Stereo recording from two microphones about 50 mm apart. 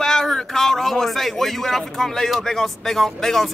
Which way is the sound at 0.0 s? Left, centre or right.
Centre.